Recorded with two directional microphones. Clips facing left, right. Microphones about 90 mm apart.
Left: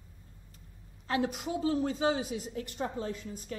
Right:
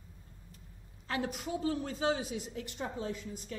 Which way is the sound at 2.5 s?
45° left (ahead or behind).